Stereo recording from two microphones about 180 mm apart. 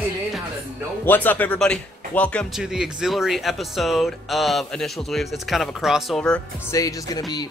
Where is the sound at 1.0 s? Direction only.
10° left (ahead or behind).